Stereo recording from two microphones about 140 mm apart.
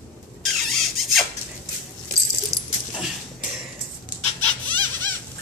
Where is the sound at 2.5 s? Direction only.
25° right (ahead or behind).